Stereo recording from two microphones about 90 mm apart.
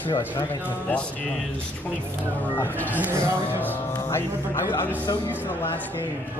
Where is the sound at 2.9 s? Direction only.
20° right (ahead or behind).